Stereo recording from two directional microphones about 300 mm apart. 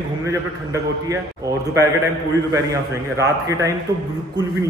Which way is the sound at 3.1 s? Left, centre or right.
Centre.